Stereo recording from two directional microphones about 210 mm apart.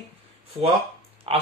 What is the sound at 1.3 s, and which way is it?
Speech, 30° right (ahead or behind).